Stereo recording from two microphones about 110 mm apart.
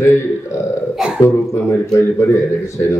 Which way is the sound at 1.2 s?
25° left (ahead or behind).